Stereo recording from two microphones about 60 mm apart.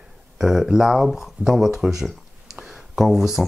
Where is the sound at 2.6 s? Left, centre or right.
Centre.